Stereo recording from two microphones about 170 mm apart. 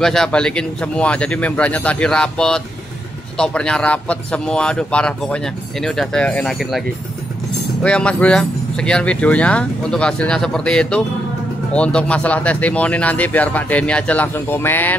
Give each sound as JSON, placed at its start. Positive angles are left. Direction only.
{"t": 0.0, "sound": "a man's voice", "side_deg": 5}
{"t": 7.8, "sound": "a man's voice", "side_deg": 5}